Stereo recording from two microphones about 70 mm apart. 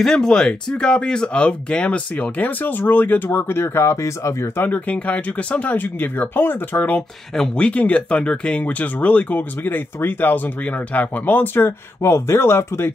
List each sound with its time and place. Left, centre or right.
0.0 s speech: centre; by 4.5 s left
4.6 s speech: left
7.3 s speech: centre; by 12.9 s left